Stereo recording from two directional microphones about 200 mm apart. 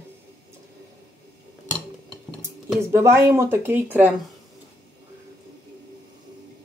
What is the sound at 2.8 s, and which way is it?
Speech, 15° right (ahead or behind).